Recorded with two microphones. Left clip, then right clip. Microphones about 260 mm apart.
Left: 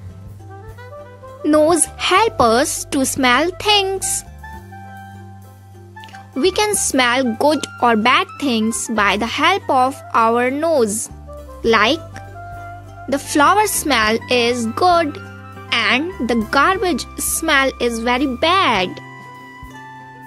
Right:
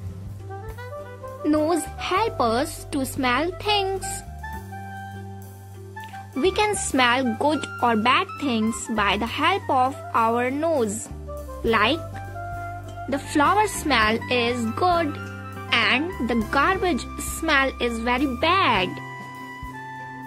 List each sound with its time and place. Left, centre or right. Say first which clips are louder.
1.4 s speech: left 8 dB; left
6.4 s speech: left 5 dB; left
13.1 s speech: left 7 dB; left
16.0 s speech: left 4 dB; centre
16.4 s speech: left 6 dB; left